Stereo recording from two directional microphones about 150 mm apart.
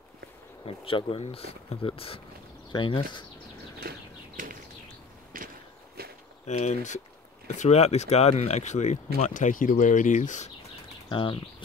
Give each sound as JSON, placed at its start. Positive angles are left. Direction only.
{"t": 0.7, "sound": "speech", "side_deg": 35}
{"t": 3.8, "sound": "a sound", "side_deg": -90}
{"t": 6.0, "sound": "walk", "side_deg": -90}
{"t": 6.4, "sound": "speech", "side_deg": 50}
{"t": 11.1, "sound": "speech", "side_deg": 35}